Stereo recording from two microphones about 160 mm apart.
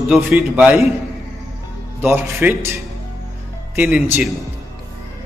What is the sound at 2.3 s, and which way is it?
Speech, 15° right (ahead or behind).